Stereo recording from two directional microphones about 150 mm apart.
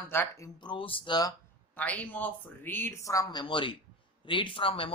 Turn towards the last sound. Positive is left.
turn(degrees=35)  # may be behind; listen again after turning